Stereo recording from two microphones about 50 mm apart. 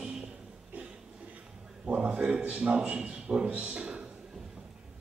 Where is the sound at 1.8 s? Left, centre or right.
Right.